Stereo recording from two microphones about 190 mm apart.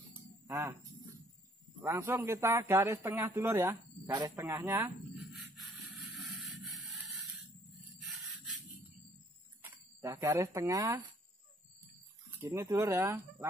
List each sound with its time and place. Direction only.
0.5 s speech: 15° right (ahead or behind)
1.8 s a man's voice: 10° right (ahead or behind)
5.3 s a sound: centre (ahead or behind)
8.0 s rub: centre (ahead or behind)
9.6 s speech: 10° right (ahead or behind)
12.4 s a man's voice: 15° right (ahead or behind)